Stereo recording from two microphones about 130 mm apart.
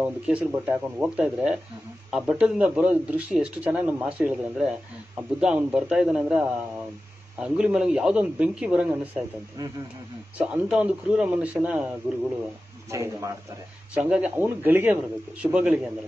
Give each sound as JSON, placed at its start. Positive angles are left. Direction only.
{"t": 0.0, "sound": "a man's voice", "side_deg": -10}
{"t": 10.3, "sound": "a man's voice", "side_deg": -10}
{"t": 12.9, "sound": "a man's voice", "side_deg": -25}
{"t": 13.9, "sound": "a man's voice", "side_deg": -10}